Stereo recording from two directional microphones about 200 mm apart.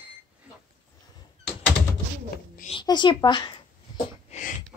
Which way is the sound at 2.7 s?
20° left (ahead or behind).